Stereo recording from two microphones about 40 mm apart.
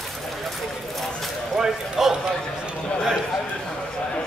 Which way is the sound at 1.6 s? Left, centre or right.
Centre.